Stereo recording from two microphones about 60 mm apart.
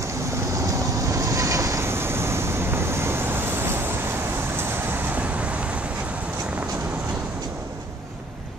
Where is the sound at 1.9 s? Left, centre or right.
Right.